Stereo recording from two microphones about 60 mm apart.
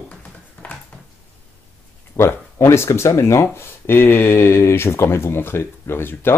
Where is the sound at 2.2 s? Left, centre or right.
Left.